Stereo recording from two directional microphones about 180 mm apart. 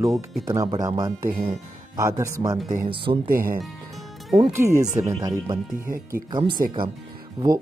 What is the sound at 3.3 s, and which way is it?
Speech, 50° right (ahead or behind).